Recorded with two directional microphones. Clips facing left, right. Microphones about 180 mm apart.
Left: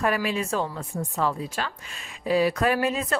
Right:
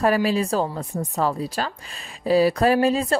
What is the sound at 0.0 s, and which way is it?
Speech, 35° right (ahead or behind).